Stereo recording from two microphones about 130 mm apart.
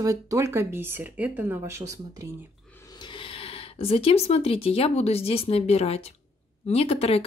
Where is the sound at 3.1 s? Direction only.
45° left (ahead or behind).